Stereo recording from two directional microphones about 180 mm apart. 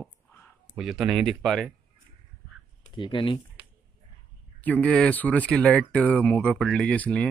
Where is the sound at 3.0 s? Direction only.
25° left (ahead or behind).